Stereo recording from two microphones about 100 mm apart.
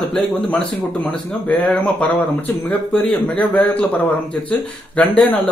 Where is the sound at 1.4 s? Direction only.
15° left (ahead or behind).